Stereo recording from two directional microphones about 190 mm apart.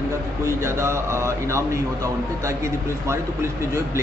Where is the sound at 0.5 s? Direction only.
15° right (ahead or behind).